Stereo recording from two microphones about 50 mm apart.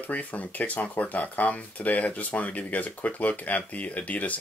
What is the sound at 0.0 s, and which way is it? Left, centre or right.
Speech, left.